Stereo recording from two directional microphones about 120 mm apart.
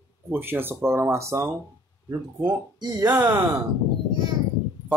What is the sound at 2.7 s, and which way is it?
Speech, 35° right (ahead or behind).